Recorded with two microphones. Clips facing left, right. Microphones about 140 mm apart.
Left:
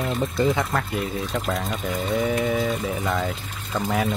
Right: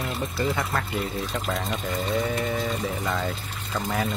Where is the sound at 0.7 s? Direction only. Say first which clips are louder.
Left 2 dB; centre (ahead or behind).